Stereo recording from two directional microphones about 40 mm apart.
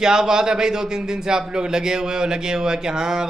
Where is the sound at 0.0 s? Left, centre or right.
Centre.